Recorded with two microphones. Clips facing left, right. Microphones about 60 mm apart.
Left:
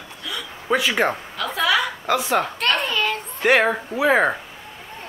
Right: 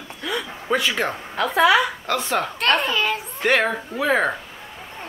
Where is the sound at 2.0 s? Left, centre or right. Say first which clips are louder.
Left 2 dB; centre.